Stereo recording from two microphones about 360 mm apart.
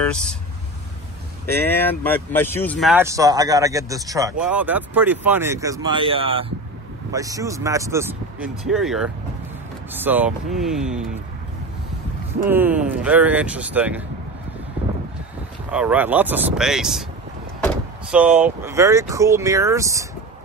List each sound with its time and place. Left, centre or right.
0.0 s speech: centre
1.4 s speech: centre
12.4 s speech: centre
15.7 s speech: centre